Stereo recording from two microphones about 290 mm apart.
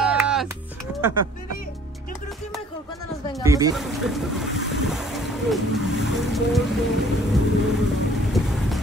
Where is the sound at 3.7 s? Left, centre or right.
Centre.